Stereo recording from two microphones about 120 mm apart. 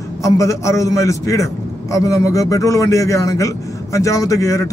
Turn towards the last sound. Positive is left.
turn(degrees=25)  # may be behind; listen again after turning